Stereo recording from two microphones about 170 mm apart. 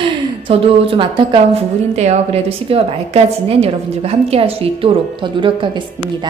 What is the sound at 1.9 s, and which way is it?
A woman's voice, 40° right (ahead or behind).